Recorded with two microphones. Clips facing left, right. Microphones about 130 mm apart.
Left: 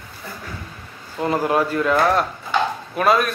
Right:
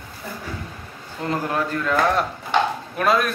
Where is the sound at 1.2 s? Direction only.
10° left (ahead or behind).